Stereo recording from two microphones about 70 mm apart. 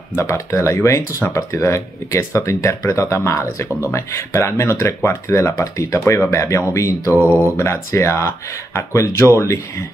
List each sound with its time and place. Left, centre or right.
0.1 s speech: left